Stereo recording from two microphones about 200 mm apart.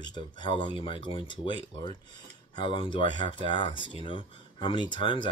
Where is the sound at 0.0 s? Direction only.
20° left (ahead or behind).